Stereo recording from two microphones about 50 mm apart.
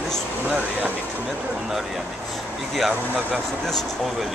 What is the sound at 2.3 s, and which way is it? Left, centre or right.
Speech, centre.